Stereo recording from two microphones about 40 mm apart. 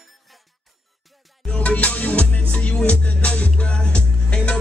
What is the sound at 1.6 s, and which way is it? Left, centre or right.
Music, left.